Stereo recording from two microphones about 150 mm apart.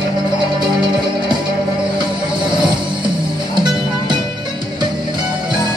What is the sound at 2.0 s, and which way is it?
Train, 30° right (ahead or behind).